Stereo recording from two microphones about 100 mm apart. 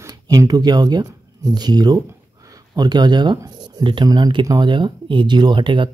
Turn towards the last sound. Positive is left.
turn(degrees=-55)  # may be behind; listen again after turning